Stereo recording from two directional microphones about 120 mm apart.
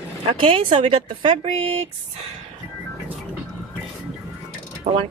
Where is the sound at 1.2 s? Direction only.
70° right (ahead or behind).